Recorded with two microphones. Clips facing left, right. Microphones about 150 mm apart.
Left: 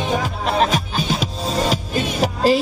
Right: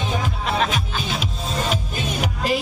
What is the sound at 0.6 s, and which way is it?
Music, 40° left (ahead or behind).